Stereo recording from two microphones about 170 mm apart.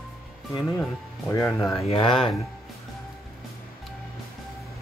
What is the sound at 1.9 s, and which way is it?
Speech, 30° left (ahead or behind).